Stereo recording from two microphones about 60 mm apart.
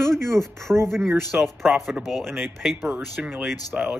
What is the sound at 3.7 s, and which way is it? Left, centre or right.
Speech, centre.